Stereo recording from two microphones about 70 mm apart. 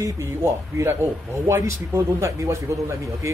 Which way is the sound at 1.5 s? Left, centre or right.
Right.